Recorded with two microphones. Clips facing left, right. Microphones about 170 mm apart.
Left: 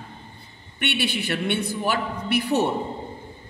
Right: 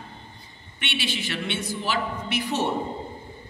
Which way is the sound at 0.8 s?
60° left (ahead or behind).